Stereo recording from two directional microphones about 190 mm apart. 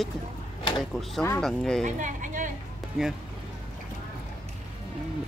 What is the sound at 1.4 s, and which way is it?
Speech, centre (ahead or behind).